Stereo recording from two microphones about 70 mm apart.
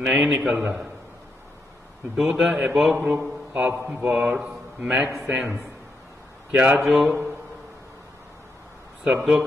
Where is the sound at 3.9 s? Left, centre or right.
Centre.